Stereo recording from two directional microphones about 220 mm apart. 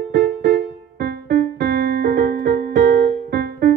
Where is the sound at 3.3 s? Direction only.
50° right (ahead or behind).